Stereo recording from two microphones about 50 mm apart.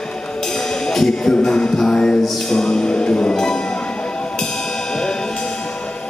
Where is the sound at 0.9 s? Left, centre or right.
Centre.